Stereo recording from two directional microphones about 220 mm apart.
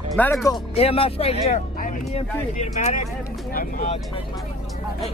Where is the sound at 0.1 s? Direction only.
10° left (ahead or behind).